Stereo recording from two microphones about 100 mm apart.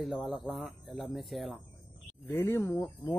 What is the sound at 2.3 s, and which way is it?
Speech, 25° left (ahead or behind).